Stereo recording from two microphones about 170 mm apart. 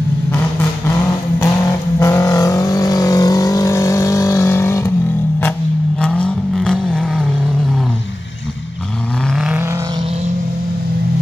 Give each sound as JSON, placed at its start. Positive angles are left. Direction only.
{"t": 0.3, "sound": "vehicle", "side_deg": 10}
{"t": 5.9, "sound": "vehicle", "side_deg": 5}
{"t": 9.3, "sound": "vehicle", "side_deg": -5}